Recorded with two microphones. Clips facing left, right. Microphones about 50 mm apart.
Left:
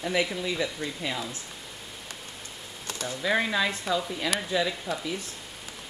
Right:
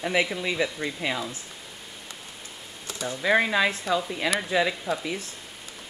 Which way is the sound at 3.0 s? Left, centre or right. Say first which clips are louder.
Right 4 dB; centre.